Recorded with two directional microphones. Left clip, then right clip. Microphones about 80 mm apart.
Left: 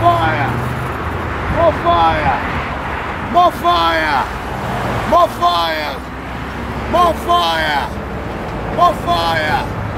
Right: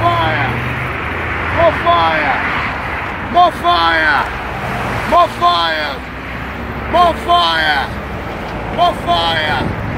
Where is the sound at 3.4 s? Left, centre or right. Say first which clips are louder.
Right 1 dB; left.